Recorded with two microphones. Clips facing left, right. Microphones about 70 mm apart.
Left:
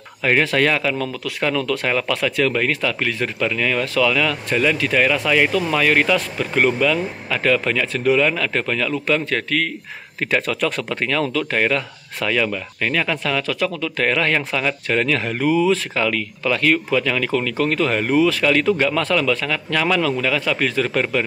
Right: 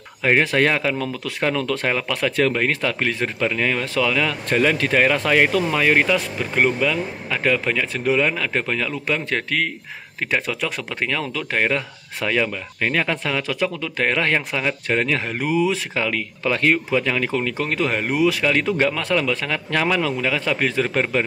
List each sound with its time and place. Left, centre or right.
0.2 s speech: right
4.5 s speech: right
5.7 s speech: centre
10.3 s speech: centre; by 21.2 s right